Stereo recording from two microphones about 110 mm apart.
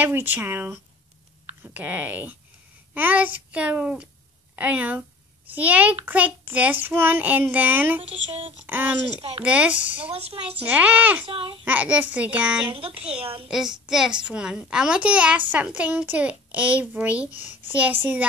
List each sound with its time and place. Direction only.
0.0 s speech: 20° right (ahead or behind)
1.6 s child singing: 15° right (ahead or behind)
8.0 s speech: 60° right (ahead or behind)
8.6 s child singing: 15° right (ahead or behind)
10.0 s speech: 60° right (ahead or behind)
10.5 s child singing: 15° right (ahead or behind)
11.2 s a child's voice: 55° right (ahead or behind)
11.6 s child singing: 15° right (ahead or behind)
12.6 s speech: 55° right (ahead or behind)
13.5 s a woman's voice: 5° right (ahead or behind)
14.7 s child singing: 10° right (ahead or behind)